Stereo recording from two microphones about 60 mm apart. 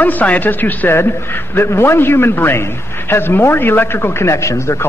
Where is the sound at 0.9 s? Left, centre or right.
Left.